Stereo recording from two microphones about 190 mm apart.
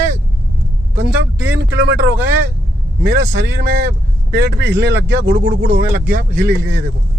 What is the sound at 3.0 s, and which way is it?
Speech, 50° right (ahead or behind).